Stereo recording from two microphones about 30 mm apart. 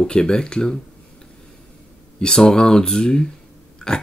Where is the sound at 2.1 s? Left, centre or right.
Left.